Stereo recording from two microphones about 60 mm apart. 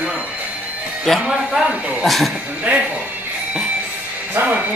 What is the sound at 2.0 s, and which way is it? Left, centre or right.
Speech, centre.